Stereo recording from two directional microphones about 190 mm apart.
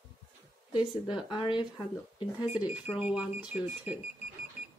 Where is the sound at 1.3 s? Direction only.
25° left (ahead or behind).